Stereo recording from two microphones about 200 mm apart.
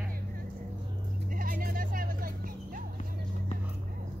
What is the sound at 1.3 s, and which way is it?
Music, 45° right (ahead or behind).